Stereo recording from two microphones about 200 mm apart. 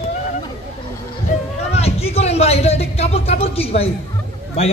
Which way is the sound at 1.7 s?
30° left (ahead or behind).